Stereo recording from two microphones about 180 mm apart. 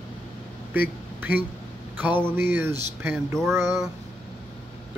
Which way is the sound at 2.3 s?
10° right (ahead or behind).